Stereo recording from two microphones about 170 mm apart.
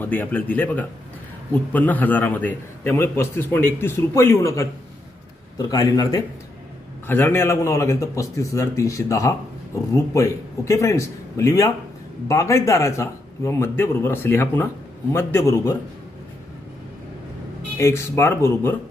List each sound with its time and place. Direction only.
0.0 s a man's voice: 10° left (ahead or behind)
7.1 s a man's voice: 15° left (ahead or behind)
17.7 s a man's voice: 15° left (ahead or behind)